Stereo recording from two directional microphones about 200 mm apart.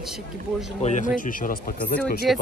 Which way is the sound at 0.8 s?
35° left (ahead or behind).